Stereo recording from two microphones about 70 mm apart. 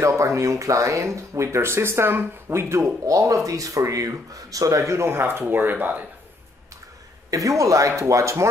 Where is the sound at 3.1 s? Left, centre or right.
Right.